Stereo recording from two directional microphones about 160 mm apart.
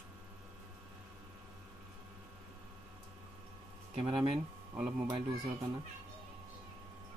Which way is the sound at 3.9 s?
35° right (ahead or behind).